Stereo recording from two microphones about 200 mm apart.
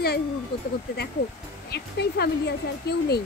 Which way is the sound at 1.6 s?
55° left (ahead or behind).